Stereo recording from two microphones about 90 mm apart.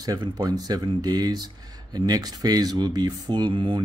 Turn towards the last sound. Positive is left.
turn(degrees=-70)  # may be behind; listen again after turning